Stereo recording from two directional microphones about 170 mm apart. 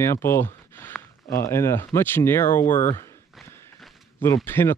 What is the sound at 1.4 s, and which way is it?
Speech, 15° left (ahead or behind).